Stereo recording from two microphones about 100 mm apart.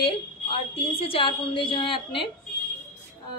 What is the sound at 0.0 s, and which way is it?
A woman's voice, 65° left (ahead or behind).